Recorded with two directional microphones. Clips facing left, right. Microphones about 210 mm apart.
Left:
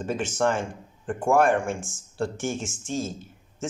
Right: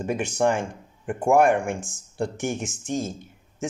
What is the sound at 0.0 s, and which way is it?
Speech, 15° right (ahead or behind).